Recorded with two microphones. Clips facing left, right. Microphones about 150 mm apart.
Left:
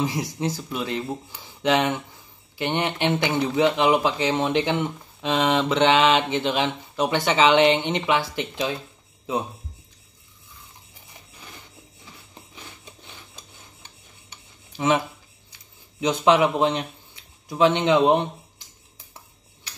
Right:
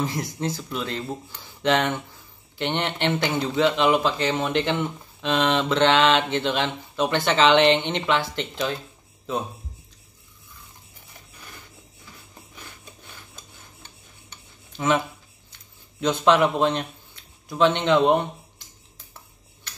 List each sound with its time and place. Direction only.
0.0 s speech: 10° left (ahead or behind)
12.5 s filing: 20° left (ahead or behind)
14.3 s a sound: 15° left (ahead or behind)
16.0 s a man's voice: 15° left (ahead or behind)